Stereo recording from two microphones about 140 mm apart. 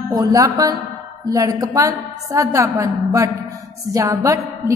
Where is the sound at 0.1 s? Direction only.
25° right (ahead or behind).